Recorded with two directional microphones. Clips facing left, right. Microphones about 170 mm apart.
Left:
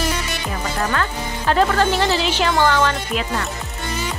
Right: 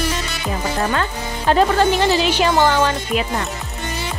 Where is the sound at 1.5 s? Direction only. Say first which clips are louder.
Right 2 dB; 15° right (ahead or behind).